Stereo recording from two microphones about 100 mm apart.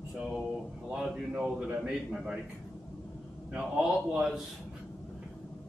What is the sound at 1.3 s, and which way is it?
Speech, 10° right (ahead or behind).